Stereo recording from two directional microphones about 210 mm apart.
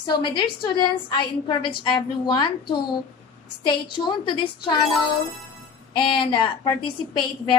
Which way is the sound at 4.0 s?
30° left (ahead or behind).